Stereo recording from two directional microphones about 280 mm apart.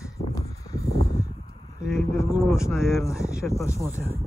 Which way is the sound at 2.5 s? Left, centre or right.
Centre.